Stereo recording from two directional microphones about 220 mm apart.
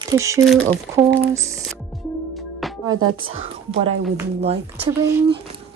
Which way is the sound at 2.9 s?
70° right (ahead or behind).